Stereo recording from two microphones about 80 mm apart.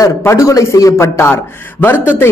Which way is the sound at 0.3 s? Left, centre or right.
Left.